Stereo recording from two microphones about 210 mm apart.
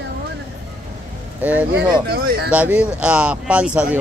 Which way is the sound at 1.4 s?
5° right (ahead or behind).